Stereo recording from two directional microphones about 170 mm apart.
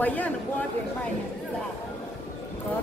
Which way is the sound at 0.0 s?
10° left (ahead or behind).